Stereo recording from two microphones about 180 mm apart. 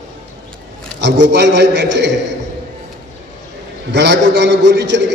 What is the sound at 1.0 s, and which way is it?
A man's voice, 75° right (ahead or behind).